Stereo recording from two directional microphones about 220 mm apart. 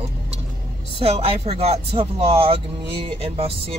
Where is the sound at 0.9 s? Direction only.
25° right (ahead or behind).